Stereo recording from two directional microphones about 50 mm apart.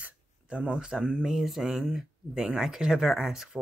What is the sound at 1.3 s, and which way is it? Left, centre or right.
Speech, centre.